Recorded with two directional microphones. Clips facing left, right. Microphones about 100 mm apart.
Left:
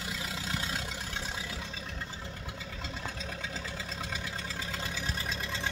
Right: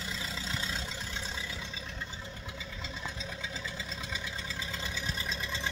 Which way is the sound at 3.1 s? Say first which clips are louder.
Left 1 dB; 50° left (ahead or behind).